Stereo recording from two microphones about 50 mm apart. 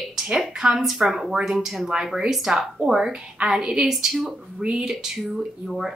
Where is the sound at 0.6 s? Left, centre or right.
Centre.